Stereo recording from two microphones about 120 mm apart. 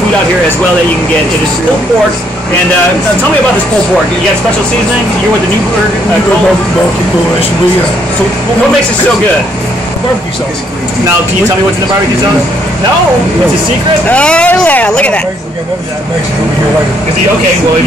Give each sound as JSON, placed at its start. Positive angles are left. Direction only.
{"t": 14.0, "sound": "speech", "side_deg": 10}